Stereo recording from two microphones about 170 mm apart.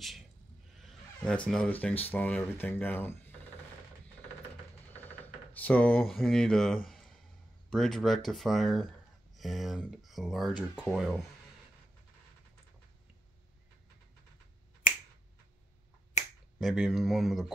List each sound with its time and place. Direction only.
0.7 s a sound: 5° left (ahead or behind)
2.0 s speech: 10° left (ahead or behind)
5.5 s speech: 10° left (ahead or behind)
6.9 s a sound: centre (ahead or behind)
7.7 s speech: centre (ahead or behind)
16.2 s finger snapping: 45° left (ahead or behind)
16.5 s speech: centre (ahead or behind)